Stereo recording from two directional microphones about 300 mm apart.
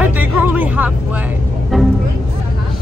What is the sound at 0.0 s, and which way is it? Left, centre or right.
Music, centre.